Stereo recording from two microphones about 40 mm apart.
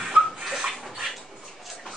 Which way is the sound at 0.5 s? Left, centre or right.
Centre.